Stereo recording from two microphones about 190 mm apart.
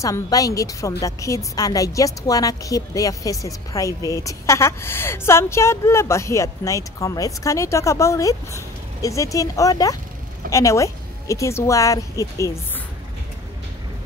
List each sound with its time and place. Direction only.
0.0 s a woman's voice: 15° left (ahead or behind)